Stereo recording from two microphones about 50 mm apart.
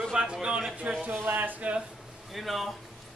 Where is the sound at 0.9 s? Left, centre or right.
Right.